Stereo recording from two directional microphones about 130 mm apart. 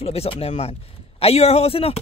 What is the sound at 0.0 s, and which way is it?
A woman's voice, 50° left (ahead or behind).